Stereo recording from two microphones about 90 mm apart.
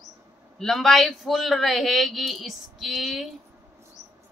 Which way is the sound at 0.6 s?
Centre (ahead or behind).